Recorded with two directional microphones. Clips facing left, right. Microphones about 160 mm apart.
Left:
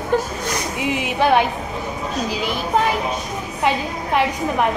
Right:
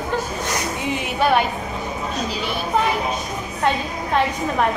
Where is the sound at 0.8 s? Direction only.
10° left (ahead or behind).